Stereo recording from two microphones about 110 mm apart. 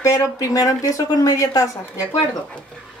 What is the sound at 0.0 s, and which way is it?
Speech, 30° left (ahead or behind).